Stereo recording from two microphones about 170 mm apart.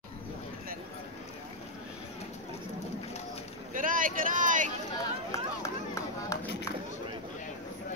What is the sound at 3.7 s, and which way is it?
Vehicle, 50° right (ahead or behind).